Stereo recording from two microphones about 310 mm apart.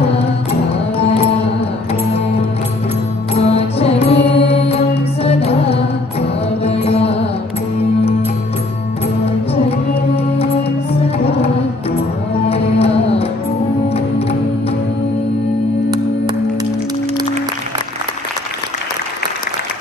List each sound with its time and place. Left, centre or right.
0.9 s music: centre
3.3 s music: centre
11.2 s a sound: centre
12.4 s music: centre